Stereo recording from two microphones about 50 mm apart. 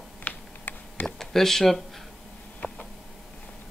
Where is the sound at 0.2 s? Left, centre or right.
Left.